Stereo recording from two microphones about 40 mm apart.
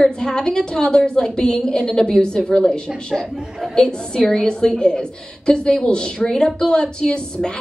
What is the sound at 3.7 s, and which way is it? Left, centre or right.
A woman's voice, centre.